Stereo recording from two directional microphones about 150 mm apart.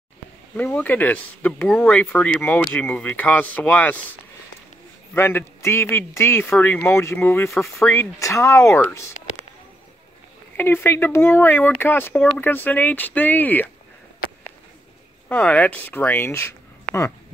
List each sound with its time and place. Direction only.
0.6 s a man's voice: 10° left (ahead or behind)
5.1 s a man's voice: 15° left (ahead or behind)
10.5 s a man's voice: 15° left (ahead or behind)
15.2 s a man's voice: 10° left (ahead or behind)